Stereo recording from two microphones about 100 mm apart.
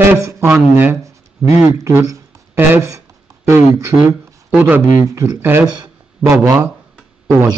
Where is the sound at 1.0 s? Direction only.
30° right (ahead or behind).